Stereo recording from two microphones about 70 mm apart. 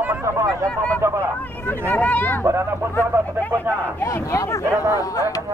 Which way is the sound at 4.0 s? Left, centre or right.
Left.